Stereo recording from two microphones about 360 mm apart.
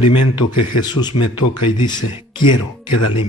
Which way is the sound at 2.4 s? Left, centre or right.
Left.